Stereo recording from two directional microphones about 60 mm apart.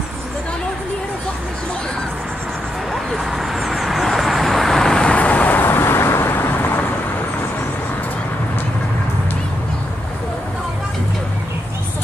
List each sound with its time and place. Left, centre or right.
2.9 s vehicle: centre
5.1 s vehicle: left